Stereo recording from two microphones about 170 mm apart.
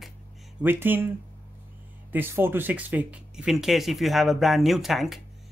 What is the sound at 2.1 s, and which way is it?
Speech, 10° right (ahead or behind).